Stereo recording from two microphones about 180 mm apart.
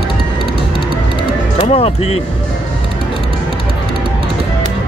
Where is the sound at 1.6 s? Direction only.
30° left (ahead or behind).